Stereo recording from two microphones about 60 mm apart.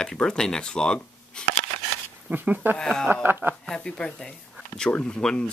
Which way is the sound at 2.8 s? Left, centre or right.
Centre.